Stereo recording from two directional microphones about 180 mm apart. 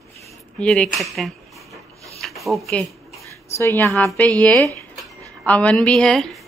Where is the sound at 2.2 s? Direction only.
Centre (ahead or behind).